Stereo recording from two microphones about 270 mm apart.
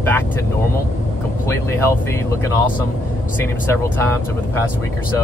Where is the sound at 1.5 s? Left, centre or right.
Centre.